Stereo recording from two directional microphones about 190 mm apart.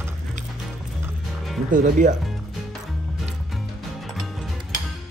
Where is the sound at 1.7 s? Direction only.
45° right (ahead or behind).